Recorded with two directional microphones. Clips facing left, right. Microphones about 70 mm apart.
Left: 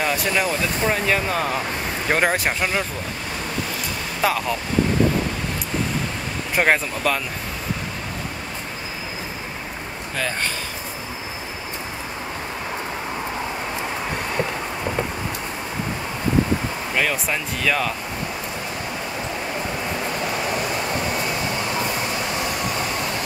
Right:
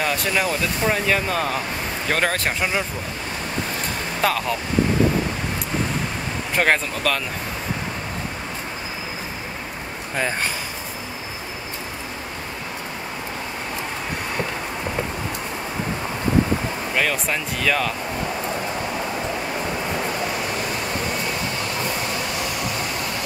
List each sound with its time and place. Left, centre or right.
0.0 s speech: centre
2.0 s speech: centre
4.2 s speech: centre
6.5 s speech: centre
10.1 s speech: centre
16.9 s speech: centre